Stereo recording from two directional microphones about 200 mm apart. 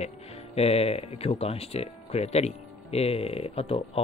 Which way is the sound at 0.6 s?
30° left (ahead or behind).